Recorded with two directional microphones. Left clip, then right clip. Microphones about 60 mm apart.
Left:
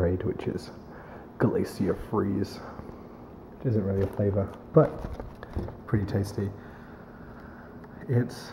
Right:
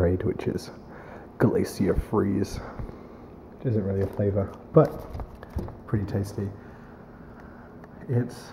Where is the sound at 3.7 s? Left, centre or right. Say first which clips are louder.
Right 1 dB; centre.